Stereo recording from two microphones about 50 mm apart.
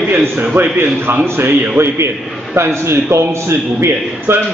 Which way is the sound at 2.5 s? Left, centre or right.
Right.